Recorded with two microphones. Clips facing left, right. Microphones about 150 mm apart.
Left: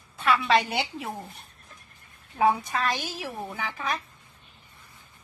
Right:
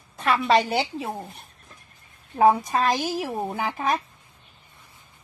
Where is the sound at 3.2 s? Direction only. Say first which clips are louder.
Right 6 dB; 45° right (ahead or behind).